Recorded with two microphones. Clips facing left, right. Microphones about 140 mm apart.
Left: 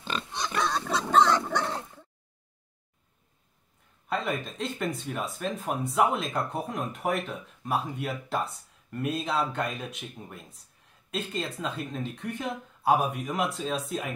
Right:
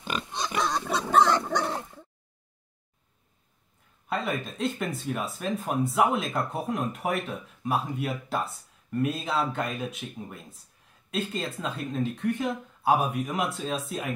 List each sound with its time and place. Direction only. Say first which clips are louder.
0.0 s pig: right 1 dB; 15° right (ahead or behind)
1.5 s bow-wow: right 1 dB; 15° right (ahead or behind)
4.1 s speech: even; centre (ahead or behind)